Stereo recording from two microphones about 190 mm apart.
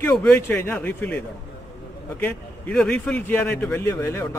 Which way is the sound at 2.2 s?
5° left (ahead or behind).